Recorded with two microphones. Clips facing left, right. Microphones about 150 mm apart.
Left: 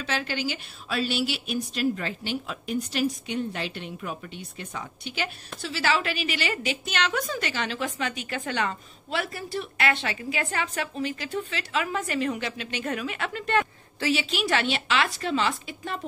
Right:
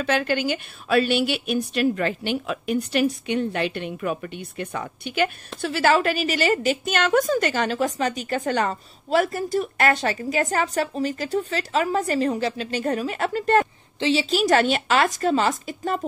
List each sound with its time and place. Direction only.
0.0 s a woman's voice: 55° right (ahead or behind)
13.9 s a woman's voice: 25° right (ahead or behind)
14.3 s a woman's voice: 40° right (ahead or behind)